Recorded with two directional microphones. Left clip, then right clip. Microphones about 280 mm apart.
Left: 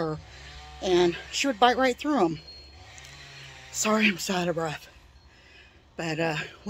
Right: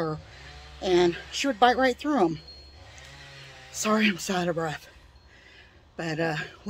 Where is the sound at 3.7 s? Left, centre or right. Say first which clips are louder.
Left 1 dB; centre.